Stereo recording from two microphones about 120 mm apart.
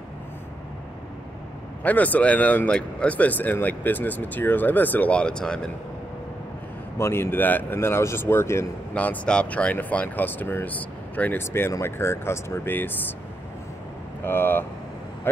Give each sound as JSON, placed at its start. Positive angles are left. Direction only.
{"t": 1.8, "sound": "speech", "side_deg": 15}
{"t": 7.0, "sound": "speech", "side_deg": 20}
{"t": 14.2, "sound": "speech", "side_deg": 20}